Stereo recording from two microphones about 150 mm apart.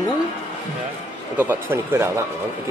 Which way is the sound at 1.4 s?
15° right (ahead or behind).